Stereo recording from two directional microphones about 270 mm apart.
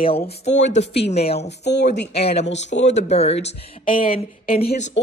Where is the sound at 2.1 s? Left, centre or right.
Left.